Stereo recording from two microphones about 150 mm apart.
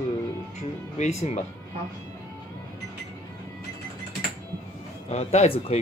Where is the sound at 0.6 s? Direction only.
50° left (ahead or behind).